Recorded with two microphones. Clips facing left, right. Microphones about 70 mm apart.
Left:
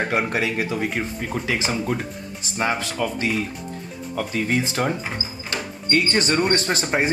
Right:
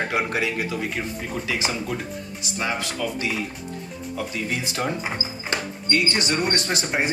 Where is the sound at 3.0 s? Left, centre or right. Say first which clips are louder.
Left 4 dB; left.